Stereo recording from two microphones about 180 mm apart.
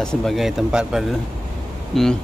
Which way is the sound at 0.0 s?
5° left (ahead or behind).